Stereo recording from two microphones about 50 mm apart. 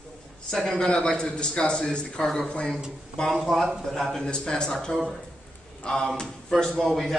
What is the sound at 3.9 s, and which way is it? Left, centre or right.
Speech, centre.